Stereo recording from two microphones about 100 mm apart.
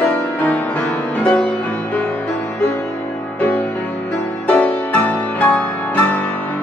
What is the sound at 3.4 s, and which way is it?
Music, 15° left (ahead or behind).